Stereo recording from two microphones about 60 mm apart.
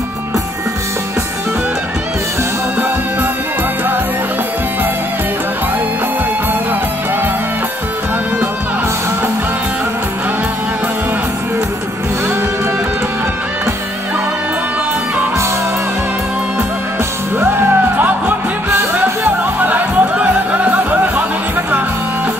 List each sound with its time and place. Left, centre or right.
17.4 s music: right